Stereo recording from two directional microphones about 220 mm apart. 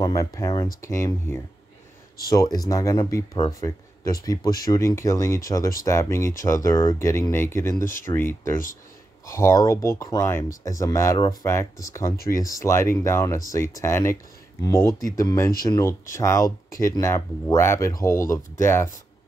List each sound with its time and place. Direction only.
0.0 s speech: 15° left (ahead or behind)